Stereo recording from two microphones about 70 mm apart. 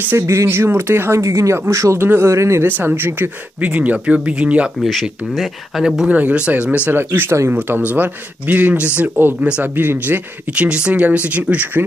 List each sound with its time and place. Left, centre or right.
0.1 s speech: right
2.0 s speech: right
2.6 s speech: right
5.3 s speech: centre
6.0 s speech: centre
6.9 s speech: right